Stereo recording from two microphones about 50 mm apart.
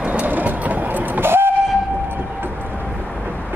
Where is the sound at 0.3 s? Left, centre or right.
Right.